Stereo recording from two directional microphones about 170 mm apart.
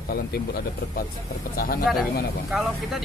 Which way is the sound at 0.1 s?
65° left (ahead or behind).